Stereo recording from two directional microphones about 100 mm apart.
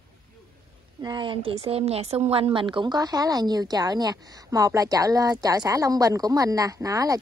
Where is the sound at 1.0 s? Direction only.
50° right (ahead or behind).